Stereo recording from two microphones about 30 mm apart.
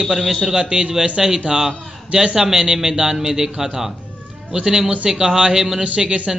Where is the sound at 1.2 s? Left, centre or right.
Centre.